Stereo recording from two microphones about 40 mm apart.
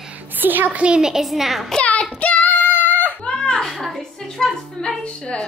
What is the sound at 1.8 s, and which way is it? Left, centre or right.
Child singing, left.